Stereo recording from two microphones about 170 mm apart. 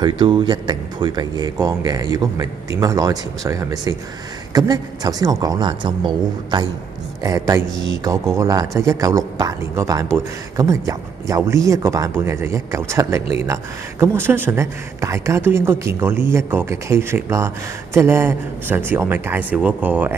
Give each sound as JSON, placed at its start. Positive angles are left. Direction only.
{"t": 0.2, "sound": "speech", "side_deg": -25}